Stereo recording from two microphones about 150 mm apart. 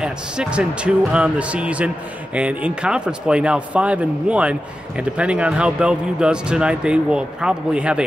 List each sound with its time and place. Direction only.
0.0 s speech: 5° right (ahead or behind)